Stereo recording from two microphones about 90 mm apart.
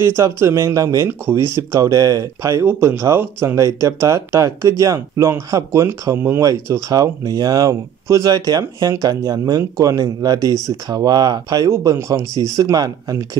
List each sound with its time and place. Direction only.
0.0 s speech: 30° right (ahead or behind)
1.5 s speech: 40° right (ahead or behind); by 6.4 s 25° right (ahead or behind)
6.4 s speech: 35° right (ahead or behind)